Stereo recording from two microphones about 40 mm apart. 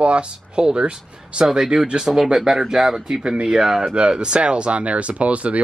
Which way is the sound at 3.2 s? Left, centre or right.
Right.